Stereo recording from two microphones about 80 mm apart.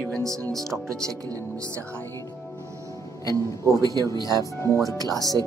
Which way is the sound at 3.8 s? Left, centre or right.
Right.